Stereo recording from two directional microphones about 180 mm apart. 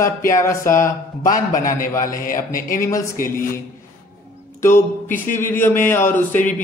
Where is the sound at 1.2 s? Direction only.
45° left (ahead or behind).